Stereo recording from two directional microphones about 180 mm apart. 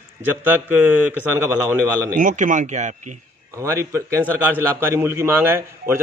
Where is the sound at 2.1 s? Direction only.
45° right (ahead or behind).